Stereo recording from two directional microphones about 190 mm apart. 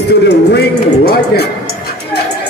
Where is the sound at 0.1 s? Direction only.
60° left (ahead or behind).